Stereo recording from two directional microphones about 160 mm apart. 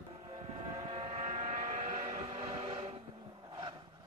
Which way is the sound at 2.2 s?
40° right (ahead or behind).